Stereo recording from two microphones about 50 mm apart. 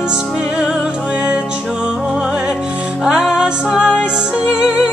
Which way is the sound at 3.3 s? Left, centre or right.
Centre.